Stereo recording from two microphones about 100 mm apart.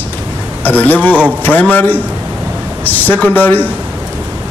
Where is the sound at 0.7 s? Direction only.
15° left (ahead or behind).